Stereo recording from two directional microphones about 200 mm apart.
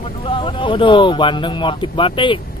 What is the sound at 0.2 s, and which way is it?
Speech, 25° left (ahead or behind).